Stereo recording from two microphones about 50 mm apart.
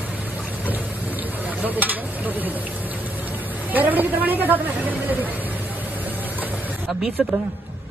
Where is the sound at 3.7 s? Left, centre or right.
Right.